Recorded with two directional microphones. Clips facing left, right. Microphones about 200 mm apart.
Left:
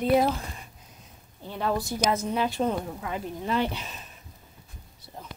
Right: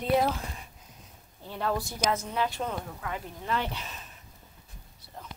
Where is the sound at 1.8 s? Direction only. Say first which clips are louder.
Left 3 dB; 15° left (ahead or behind).